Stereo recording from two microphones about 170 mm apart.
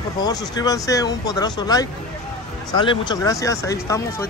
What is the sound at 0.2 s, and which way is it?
Speech, 20° left (ahead or behind).